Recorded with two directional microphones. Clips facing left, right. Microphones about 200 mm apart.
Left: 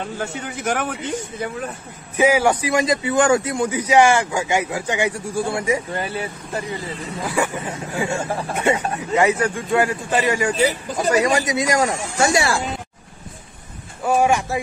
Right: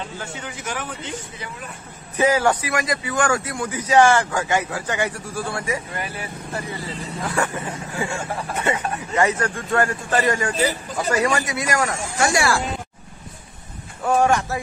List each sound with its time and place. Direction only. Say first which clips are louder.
0.7 s speech: left 8 dB; 60° left (ahead or behind)
2.1 s a man's voice: left 2 dB; 10° left (ahead or behind)
7.2 s a man's voice: left 2 dB; 10° left (ahead or behind)
7.5 s a man's voice: left 2 dB; 25° left (ahead or behind)
14.0 s a man's voice: left 1 dB; 10° left (ahead or behind)